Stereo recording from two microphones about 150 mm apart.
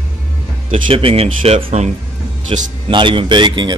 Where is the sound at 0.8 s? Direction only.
40° right (ahead or behind).